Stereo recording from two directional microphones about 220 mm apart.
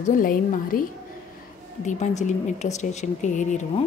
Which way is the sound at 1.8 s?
35° left (ahead or behind).